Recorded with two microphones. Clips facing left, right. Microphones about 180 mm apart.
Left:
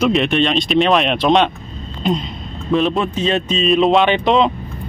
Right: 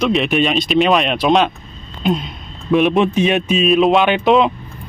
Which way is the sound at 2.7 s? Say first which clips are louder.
Right 3 dB; 15° right (ahead or behind).